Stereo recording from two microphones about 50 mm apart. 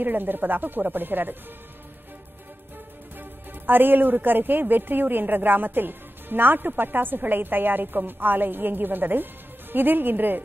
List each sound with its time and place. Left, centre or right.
0.0 s speech: right
3.2 s speech: right